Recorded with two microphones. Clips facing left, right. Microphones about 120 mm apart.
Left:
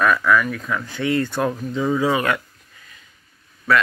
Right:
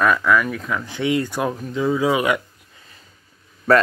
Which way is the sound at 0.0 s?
20° right (ahead or behind).